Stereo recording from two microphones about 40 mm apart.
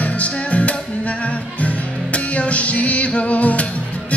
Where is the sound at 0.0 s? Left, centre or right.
Left.